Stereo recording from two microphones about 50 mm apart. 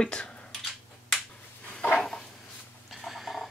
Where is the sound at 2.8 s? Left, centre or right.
Centre.